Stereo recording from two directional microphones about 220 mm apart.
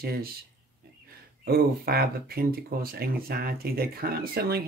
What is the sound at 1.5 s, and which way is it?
Speech, 45° right (ahead or behind).